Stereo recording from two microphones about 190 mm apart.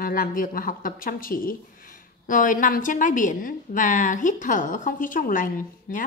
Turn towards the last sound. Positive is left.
turn(degrees=45)  # may be behind; listen again after turning